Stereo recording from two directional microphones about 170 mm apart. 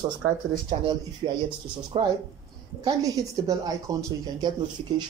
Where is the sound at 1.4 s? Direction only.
30° right (ahead or behind).